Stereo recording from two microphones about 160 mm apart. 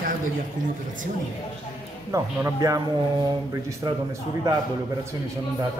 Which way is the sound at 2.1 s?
20° right (ahead or behind).